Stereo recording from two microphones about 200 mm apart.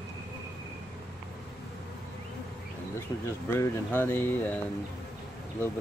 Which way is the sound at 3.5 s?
10° left (ahead or behind).